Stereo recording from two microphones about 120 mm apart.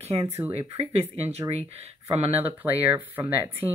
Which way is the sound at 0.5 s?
60° right (ahead or behind).